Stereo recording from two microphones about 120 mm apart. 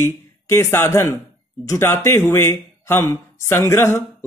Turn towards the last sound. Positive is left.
turn(degrees=20)  # may be behind; listen again after turning